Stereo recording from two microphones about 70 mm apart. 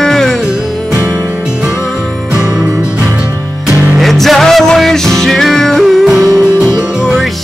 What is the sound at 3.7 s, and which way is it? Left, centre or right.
Music, right.